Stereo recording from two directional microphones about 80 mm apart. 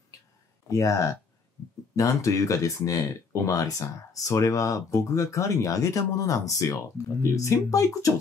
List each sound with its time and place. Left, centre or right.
0.7 s speech: left